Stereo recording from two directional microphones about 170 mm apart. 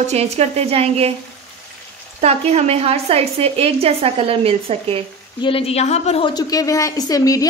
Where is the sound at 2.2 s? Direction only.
40° right (ahead or behind).